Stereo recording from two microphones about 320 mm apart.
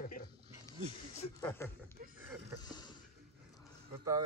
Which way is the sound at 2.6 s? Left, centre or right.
Centre.